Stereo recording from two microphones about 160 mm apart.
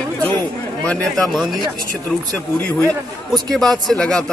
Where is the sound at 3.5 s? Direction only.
Centre (ahead or behind).